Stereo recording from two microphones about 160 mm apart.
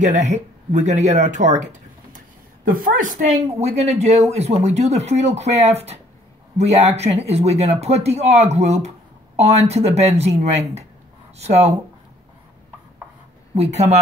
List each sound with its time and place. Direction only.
0.0 s speech: 45° right (ahead or behind)
13.6 s speech: 40° right (ahead or behind)